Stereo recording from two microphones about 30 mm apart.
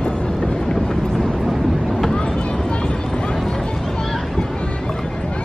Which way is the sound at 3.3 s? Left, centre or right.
Centre.